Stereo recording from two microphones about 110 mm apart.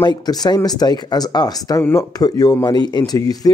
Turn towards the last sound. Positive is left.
turn(degrees=35)  # may be behind; listen again after turning